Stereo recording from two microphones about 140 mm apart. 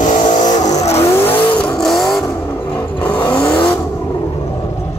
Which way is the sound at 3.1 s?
15° left (ahead or behind).